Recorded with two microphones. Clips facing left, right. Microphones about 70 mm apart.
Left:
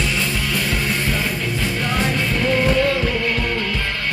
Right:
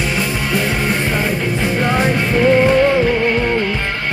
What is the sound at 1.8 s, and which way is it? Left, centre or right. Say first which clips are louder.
Music: right 5 dB; right.